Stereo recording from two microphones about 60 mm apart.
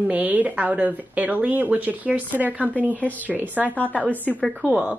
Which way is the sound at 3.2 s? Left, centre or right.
Right.